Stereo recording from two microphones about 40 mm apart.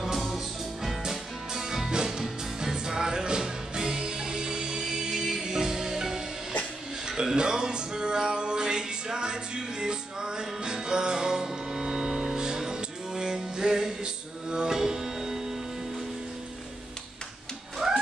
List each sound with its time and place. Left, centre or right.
0.0 s music: centre
17.7 s dog: centre